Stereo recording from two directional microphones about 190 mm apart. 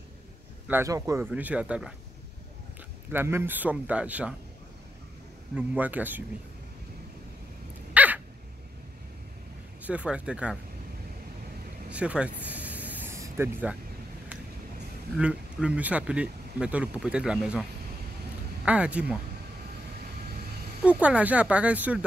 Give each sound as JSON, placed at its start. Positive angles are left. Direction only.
{"t": 0.7, "sound": "speech", "side_deg": -15}
{"t": 3.1, "sound": "speech", "side_deg": -10}
{"t": 5.6, "sound": "speech", "side_deg": -10}
{"t": 7.9, "sound": "dog", "side_deg": -10}
{"t": 9.8, "sound": "speech", "side_deg": -5}
{"t": 11.9, "sound": "a sound", "side_deg": -5}
{"t": 15.1, "sound": "speech", "side_deg": -5}
{"t": 18.7, "sound": "speech", "side_deg": -5}
{"t": 21.0, "sound": "speech", "side_deg": -5}